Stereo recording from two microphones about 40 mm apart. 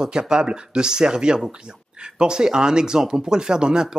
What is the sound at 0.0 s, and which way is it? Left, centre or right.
Speech, centre.